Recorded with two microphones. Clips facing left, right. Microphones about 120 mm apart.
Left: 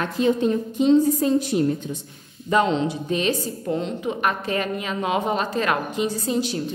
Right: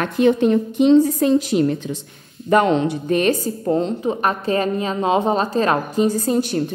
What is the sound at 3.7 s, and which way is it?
A woman's voice, 35° right (ahead or behind).